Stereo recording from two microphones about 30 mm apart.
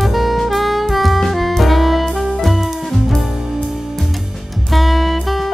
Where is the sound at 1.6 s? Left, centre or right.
Centre.